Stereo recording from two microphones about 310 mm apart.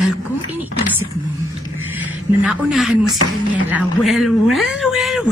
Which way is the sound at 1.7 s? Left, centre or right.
Centre.